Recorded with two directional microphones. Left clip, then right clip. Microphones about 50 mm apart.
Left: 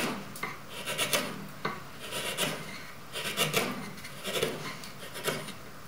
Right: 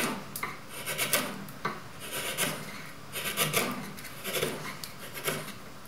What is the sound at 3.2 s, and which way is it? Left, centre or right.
Filing, centre.